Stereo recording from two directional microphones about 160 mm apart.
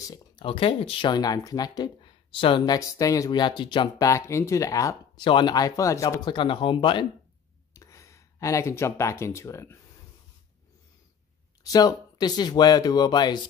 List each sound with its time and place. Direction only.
0.0 s a sound: 25° left (ahead or behind)
0.5 s speech: 35° left (ahead or behind)
7.7 s speech: 20° left (ahead or behind)
11.6 s speech: 25° left (ahead or behind)